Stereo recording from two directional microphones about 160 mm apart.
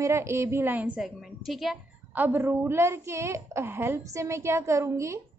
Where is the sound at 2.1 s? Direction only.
10° right (ahead or behind).